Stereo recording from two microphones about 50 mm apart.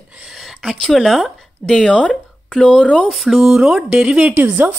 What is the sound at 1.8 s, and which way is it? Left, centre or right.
Speech, centre.